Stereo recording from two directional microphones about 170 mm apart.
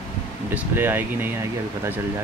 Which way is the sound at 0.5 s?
10° right (ahead or behind).